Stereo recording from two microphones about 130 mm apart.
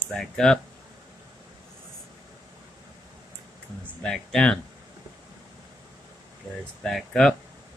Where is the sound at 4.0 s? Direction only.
5° left (ahead or behind).